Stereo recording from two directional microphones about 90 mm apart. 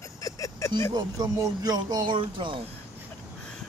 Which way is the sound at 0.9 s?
45° right (ahead or behind).